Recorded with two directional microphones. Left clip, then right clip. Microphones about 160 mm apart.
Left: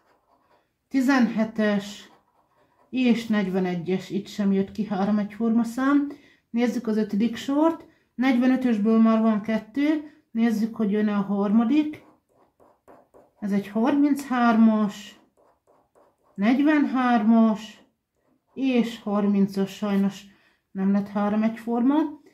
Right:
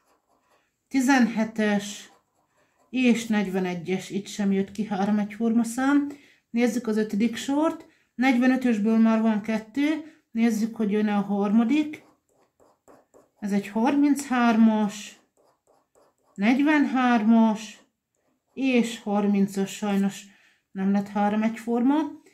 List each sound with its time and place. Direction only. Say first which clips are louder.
0.9 s speech: even; 40° left (ahead or behind)
13.4 s speech: even; 35° left (ahead or behind)
16.3 s speech: even; 35° left (ahead or behind)